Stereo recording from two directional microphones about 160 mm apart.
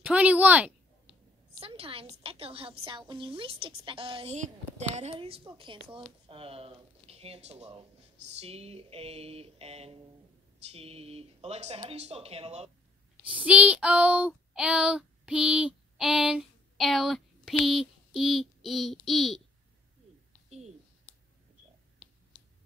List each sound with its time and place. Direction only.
0.0 s a woman's voice: 10° right (ahead or behind)
1.6 s a woman's voice: 35° right (ahead or behind)
13.3 s child singing: 10° right (ahead or behind)
20.4 s a sound: 45° right (ahead or behind)